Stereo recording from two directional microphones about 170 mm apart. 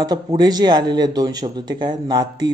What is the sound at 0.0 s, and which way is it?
A man's voice, 25° right (ahead or behind).